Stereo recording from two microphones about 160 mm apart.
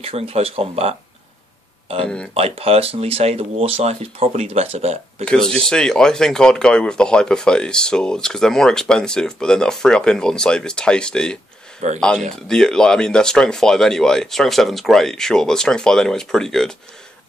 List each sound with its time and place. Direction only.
0.0 s speech: 40° right (ahead or behind)
5.2 s speech: 5° left (ahead or behind)
11.8 s speech: 45° right (ahead or behind)
12.4 s speech: 5° left (ahead or behind)